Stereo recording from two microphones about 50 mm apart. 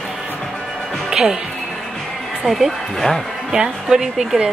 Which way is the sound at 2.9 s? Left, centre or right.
Centre.